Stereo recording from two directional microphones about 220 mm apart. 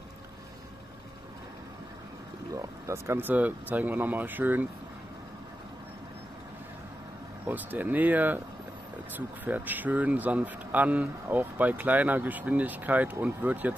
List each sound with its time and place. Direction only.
2.5 s speech: 10° right (ahead or behind)
7.4 s speech: 10° right (ahead or behind)